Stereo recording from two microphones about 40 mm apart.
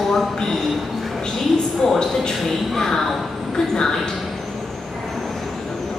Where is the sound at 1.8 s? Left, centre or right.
Centre.